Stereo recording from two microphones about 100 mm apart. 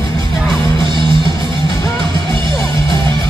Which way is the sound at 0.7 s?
50° right (ahead or behind).